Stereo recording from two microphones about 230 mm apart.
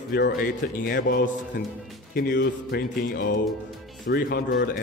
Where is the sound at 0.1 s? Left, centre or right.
Left.